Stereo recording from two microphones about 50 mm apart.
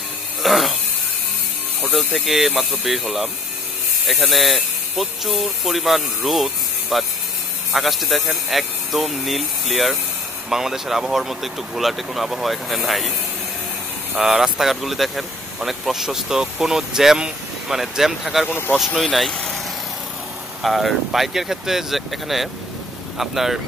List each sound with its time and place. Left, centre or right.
0.4 s a sound: centre
1.8 s speech: centre
14.1 s speech: centre
20.6 s speech: centre